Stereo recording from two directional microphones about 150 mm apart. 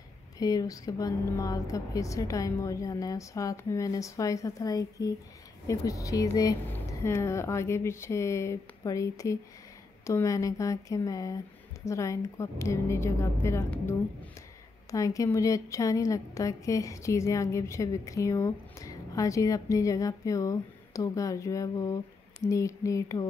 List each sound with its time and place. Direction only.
0.4 s a woman's voice: 25° left (ahead or behind)